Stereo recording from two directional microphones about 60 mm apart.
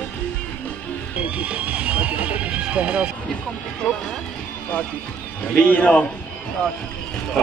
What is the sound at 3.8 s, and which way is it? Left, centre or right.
Speech, centre.